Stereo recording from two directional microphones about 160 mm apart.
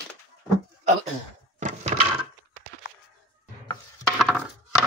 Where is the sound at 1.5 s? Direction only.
50° right (ahead or behind).